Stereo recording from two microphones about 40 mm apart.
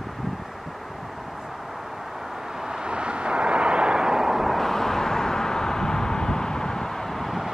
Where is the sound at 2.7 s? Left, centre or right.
Right.